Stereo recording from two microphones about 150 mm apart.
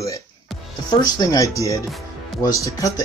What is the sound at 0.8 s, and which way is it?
Speech, 30° left (ahead or behind).